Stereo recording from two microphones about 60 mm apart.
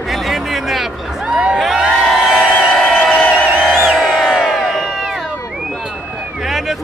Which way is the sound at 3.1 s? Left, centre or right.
Left.